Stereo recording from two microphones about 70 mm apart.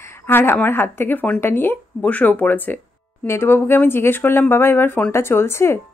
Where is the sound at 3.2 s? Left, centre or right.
Left.